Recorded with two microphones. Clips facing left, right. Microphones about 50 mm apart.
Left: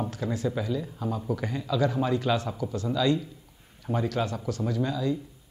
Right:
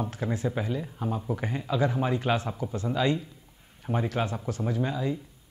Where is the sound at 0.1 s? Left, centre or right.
Right.